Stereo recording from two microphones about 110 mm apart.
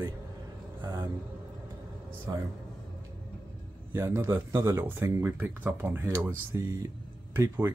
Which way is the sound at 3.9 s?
25° right (ahead or behind).